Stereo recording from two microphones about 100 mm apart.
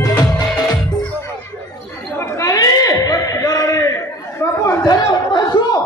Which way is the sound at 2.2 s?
30° left (ahead or behind).